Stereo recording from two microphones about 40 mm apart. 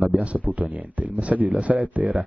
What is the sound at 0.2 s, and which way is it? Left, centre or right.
Speech, right.